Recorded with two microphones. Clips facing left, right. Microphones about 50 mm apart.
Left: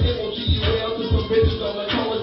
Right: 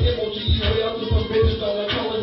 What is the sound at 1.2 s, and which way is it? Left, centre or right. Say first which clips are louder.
Music: even; centre.